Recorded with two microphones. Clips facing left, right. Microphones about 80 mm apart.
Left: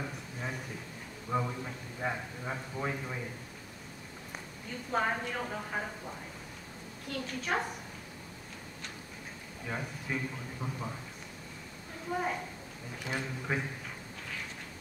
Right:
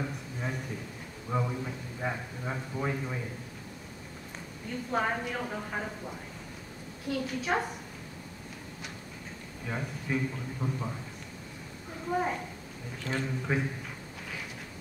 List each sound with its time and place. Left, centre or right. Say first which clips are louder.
0.0 s a sound: right 3 dB; centre
1.3 s a man's voice: right 1 dB; centre
4.6 s a man's voice: right 2 dB; centre
9.7 s a man's voice: right 3 dB; centre
12.1 s a woman's voice: right 3 dB; centre